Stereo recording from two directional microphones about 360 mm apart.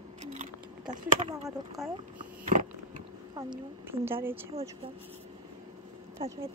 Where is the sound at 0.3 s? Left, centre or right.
Centre.